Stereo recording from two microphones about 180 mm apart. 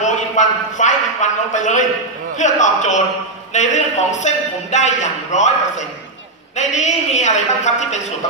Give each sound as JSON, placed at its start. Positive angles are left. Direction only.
{"t": 0.0, "sound": "a man's voice", "side_deg": 45}